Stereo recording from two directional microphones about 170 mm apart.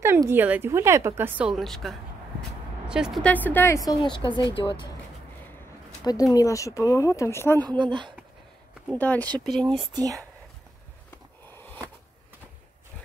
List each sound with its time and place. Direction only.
0.0 s a woman's voice: 15° right (ahead or behind); by 4.8 s 30° left (ahead or behind)
6.0 s speech: 20° left (ahead or behind)
7.6 s speech: 30° right (ahead or behind)
8.9 s speech: 10° left (ahead or behind)
11.5 s a sound: 10° left (ahead or behind)